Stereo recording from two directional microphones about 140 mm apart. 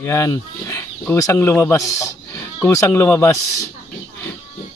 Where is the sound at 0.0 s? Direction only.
20° left (ahead or behind).